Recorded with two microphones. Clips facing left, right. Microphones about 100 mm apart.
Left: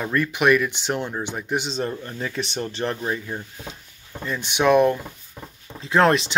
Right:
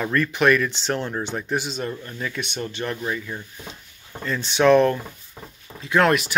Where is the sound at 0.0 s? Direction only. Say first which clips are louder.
Right 1 dB; 15° left (ahead or behind).